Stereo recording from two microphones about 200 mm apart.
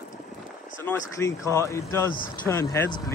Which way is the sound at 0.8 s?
15° left (ahead or behind).